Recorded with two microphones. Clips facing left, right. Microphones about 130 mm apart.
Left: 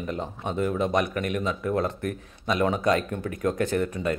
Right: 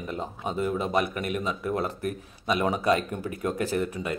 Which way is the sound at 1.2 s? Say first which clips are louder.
Left 2 dB; 40° left (ahead or behind).